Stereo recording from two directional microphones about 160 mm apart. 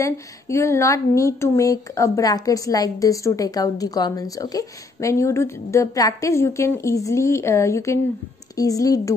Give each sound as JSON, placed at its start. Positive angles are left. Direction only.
{"t": 0.0, "sound": "speech", "side_deg": 15}